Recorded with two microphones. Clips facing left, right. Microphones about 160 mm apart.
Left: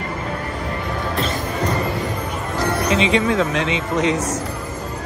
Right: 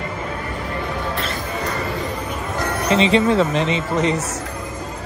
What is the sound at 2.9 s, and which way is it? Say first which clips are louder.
Speech: right 4 dB; 35° right (ahead or behind).